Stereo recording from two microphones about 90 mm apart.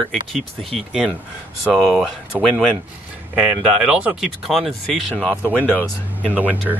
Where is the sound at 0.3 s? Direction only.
Centre (ahead or behind).